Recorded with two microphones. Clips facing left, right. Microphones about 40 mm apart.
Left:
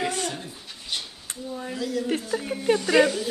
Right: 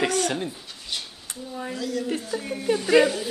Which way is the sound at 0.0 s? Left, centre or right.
Right.